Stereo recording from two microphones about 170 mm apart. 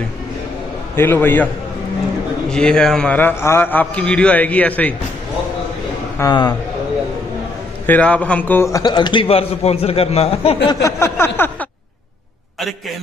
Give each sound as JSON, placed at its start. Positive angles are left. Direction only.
{"t": 0.9, "sound": "a man's voice", "side_deg": 15}
{"t": 2.5, "sound": "a man's voice", "side_deg": 5}
{"t": 6.1, "sound": "a man's voice", "side_deg": 20}
{"t": 7.8, "sound": "a man's voice", "side_deg": 10}
{"t": 8.7, "sound": "a man's voice", "side_deg": 25}
{"t": 10.8, "sound": "a sound", "side_deg": 15}